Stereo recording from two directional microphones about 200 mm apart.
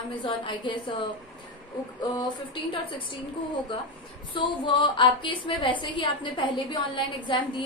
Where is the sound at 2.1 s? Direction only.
20° left (ahead or behind).